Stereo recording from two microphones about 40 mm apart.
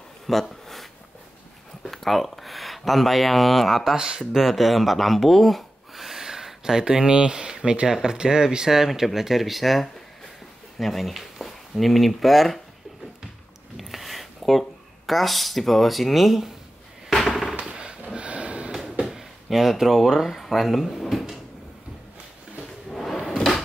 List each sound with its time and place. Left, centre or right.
0.3 s speech: centre
1.9 s speech: centre
3.9 s speech: centre
13.7 s a sound: centre
15.0 s speech: centre
17.6 s a sound: right
18.1 s snort: right
19.0 s speech: centre
22.8 s drawer open or close: centre